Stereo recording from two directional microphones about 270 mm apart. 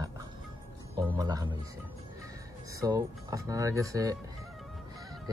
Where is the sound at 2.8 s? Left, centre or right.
Centre.